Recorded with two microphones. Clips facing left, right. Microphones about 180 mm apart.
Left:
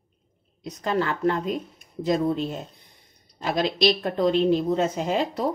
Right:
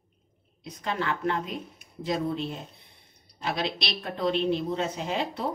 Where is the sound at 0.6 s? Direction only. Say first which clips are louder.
Left 6 dB; 40° left (ahead or behind).